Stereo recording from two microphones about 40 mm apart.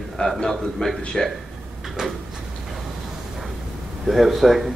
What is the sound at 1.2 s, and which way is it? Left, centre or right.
Speech, centre.